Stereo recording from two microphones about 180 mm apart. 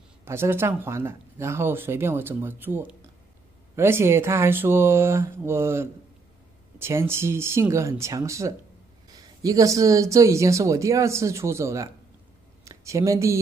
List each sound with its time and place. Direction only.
0.2 s speech: 15° right (ahead or behind)